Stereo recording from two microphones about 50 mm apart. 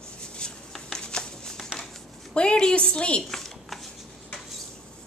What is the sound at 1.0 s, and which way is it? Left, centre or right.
Shuffling cards, centre.